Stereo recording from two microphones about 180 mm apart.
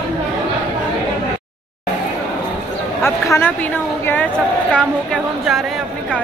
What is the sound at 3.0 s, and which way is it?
A woman's voice, 15° left (ahead or behind).